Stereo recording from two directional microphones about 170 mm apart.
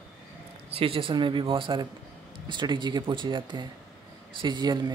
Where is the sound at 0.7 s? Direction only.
30° right (ahead or behind).